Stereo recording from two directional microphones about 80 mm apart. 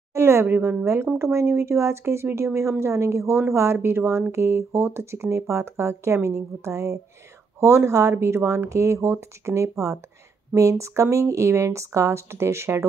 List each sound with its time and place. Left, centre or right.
0.1 s a woman's voice: right